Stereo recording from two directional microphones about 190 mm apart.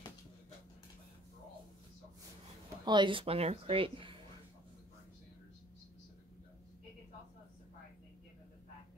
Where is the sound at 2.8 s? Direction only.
25° right (ahead or behind).